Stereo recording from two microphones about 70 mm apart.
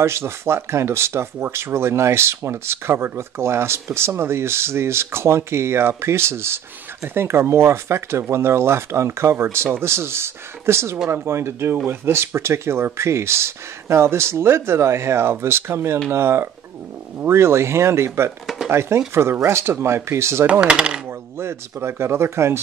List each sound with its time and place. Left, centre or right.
0.0 s speech: right
20.6 s speech: centre
21.4 s speech: right